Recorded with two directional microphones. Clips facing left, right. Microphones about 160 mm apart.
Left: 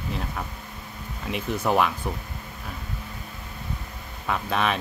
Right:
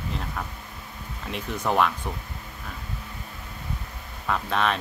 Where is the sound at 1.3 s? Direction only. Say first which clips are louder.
Left 2 dB; 5° left (ahead or behind).